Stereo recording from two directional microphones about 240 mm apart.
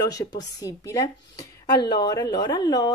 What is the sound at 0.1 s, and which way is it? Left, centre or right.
A woman's voice, centre.